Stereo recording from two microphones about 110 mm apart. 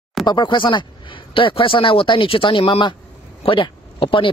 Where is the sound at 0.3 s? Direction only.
45° left (ahead or behind).